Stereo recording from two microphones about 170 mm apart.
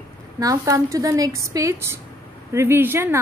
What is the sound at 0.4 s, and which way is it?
A woman's voice, 20° right (ahead or behind).